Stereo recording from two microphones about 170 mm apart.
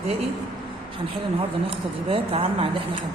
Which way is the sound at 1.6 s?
35° right (ahead or behind).